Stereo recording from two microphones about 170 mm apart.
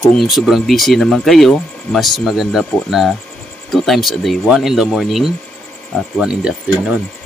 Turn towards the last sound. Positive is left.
turn(degrees=-5)  # may be behind; listen again after turning